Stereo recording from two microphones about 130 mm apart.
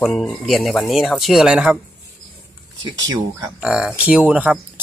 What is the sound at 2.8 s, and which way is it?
Speech, 30° right (ahead or behind).